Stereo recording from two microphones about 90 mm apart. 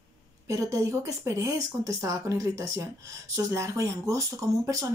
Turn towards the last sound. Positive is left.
turn(degrees=-35)  # may be behind; listen again after turning